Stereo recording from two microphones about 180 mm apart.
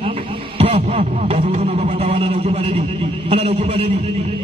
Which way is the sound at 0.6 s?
35° right (ahead or behind).